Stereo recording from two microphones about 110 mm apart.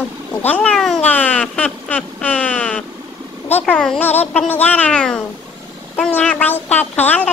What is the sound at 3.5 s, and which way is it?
Speech, 15° left (ahead or behind).